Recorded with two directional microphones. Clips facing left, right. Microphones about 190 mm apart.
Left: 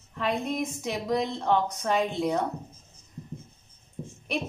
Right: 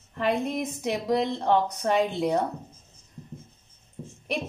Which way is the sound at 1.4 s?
40° right (ahead or behind).